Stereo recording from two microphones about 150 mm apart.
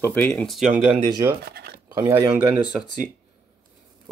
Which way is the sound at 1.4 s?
90° right.